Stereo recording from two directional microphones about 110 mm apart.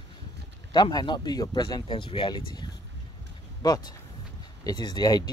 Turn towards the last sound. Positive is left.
turn(degrees=40)  # may be behind; listen again after turning